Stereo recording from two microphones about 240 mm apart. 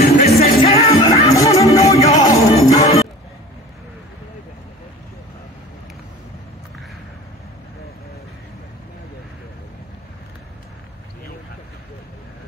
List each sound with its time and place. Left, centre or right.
0.0 s music: left
0.4 s music: left